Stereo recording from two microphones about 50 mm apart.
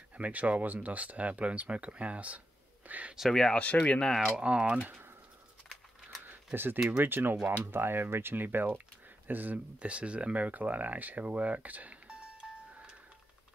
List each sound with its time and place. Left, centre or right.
0.2 s speech: right
3.3 s speech: centre
3.5 s speech: left
4.4 s speech: right
6.2 s a sound: right
7.0 s speech: right
9.8 s speech: right
12.4 s music: centre